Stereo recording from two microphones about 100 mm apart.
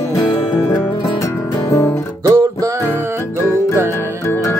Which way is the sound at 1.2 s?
35° left (ahead or behind).